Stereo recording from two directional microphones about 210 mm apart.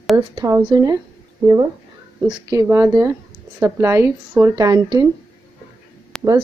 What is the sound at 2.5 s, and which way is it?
Speech, 15° right (ahead or behind).